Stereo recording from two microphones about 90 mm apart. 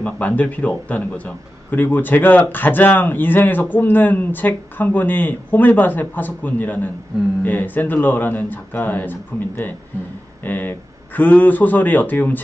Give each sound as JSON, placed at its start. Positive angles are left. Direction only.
{"t": 0.0, "sound": "a man's voice", "side_deg": 15}